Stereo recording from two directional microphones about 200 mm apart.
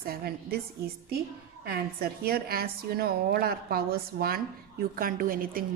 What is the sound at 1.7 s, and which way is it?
A woman's voice, 50° right (ahead or behind).